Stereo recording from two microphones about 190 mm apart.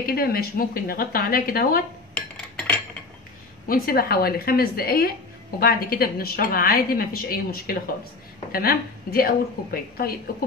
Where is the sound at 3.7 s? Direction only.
50° left (ahead or behind).